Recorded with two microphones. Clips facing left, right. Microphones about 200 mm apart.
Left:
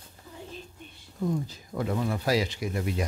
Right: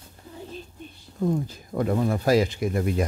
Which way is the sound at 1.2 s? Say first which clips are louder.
Right 4 dB; 50° right (ahead or behind).